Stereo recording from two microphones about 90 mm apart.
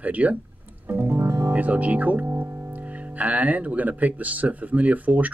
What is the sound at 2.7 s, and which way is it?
Speech, 15° right (ahead or behind).